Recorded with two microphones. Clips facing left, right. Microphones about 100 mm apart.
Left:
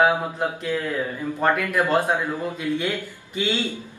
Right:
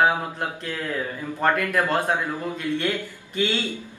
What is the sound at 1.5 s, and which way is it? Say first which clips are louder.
Speech: left 2 dB; 10° left (ahead or behind).